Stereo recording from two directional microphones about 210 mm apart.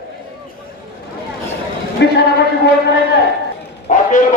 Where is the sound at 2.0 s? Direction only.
55° left (ahead or behind).